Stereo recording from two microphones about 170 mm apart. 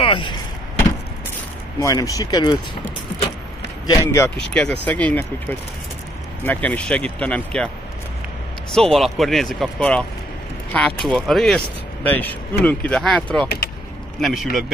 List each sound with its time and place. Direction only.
0.0 s a sound: 30° left (ahead or behind)
1.8 s speech: 20° left (ahead or behind)
3.8 s speech: 20° left (ahead or behind)
4.4 s speech: 5° left (ahead or behind)
8.9 s speech: centre (ahead or behind)